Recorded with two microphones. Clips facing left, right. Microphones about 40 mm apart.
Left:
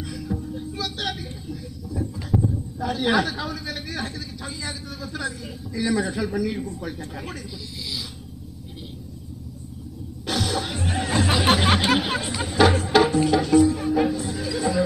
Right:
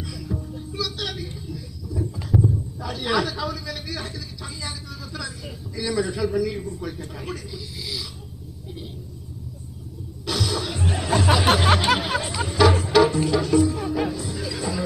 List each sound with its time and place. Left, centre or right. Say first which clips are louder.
0.3 s music: left 1 dB; left
0.7 s vehicle: right 1 dB; left
1.1 s a sound: even; left
2.0 s a sound: right 1 dB; centre
2.8 s a man's voice: left 3 dB; left
10.2 s music: left 1 dB; left
14.1 s music: left 3 dB; left